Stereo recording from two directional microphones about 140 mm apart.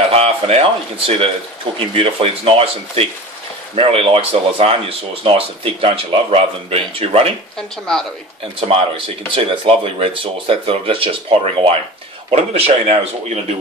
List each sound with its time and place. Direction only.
0.1 s speech: 45° right (ahead or behind)
8.5 s speech: 40° right (ahead or behind)